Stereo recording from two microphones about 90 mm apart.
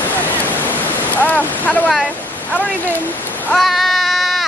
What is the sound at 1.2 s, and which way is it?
Boat, 15° left (ahead or behind).